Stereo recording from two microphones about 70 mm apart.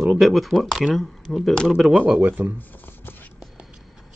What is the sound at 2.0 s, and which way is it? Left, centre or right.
Speech, right.